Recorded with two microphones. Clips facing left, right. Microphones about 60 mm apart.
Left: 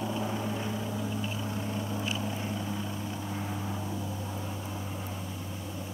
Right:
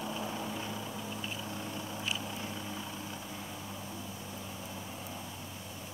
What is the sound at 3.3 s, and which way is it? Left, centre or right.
Vehicle, left.